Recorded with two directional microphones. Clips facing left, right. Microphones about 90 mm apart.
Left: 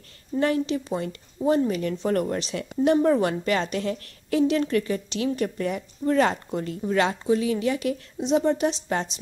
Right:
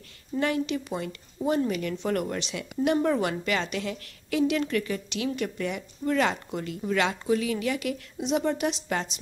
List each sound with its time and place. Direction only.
0.4 s speech: 35° left (ahead or behind)